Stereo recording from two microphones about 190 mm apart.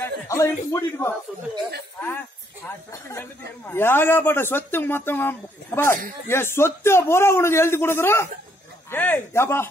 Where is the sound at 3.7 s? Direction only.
10° left (ahead or behind).